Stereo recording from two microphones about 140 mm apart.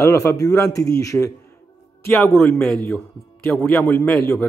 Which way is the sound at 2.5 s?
5° left (ahead or behind).